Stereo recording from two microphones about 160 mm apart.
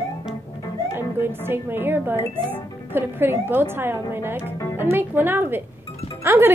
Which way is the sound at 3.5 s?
15° right (ahead or behind).